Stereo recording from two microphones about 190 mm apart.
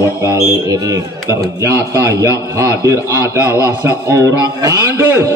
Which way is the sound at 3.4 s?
15° left (ahead or behind).